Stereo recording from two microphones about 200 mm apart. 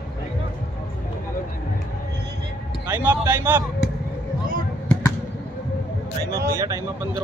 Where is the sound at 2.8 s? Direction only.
10° right (ahead or behind).